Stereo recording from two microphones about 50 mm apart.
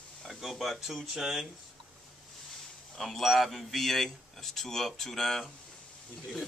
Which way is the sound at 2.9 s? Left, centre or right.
Centre.